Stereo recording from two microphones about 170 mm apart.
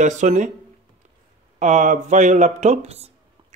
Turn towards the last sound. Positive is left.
turn(degrees=-40)  # may be behind; listen again after turning